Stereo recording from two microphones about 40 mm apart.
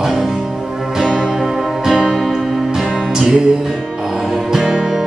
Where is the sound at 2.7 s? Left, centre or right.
Centre.